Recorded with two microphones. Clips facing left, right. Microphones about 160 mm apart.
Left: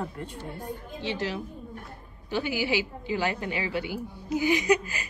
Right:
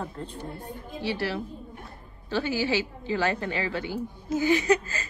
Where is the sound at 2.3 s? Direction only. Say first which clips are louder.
Right 1 dB; 15° left (ahead or behind).